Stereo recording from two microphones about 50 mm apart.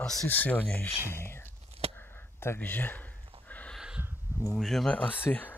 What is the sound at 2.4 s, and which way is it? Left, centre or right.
Speech, left.